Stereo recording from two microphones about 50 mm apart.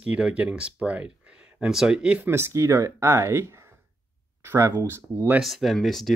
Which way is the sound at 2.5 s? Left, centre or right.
Right.